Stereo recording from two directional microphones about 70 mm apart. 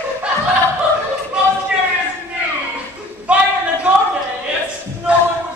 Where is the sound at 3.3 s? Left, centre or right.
Centre.